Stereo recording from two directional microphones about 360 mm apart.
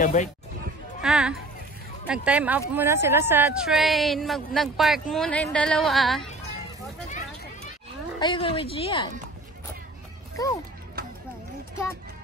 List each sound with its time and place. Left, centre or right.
0.0 s speech: left
1.0 s speech: centre
7.1 s a sound: centre
8.2 s speech: centre
10.3 s speech: centre
11.0 s a sound: right